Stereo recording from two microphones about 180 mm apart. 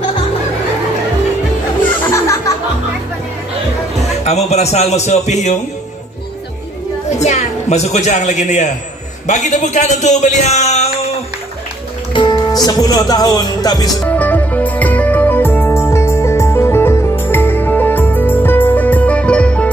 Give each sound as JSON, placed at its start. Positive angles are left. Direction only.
{"t": 4.2, "sound": "a man's voice", "side_deg": 35}
{"t": 7.2, "sound": "a man's voice", "side_deg": 40}
{"t": 12.1, "sound": "speech", "side_deg": 25}
{"t": 14.0, "sound": "music", "side_deg": 10}